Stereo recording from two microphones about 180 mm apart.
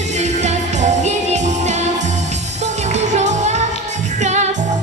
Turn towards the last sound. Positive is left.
turn(degrees=-40)  # may be behind; listen again after turning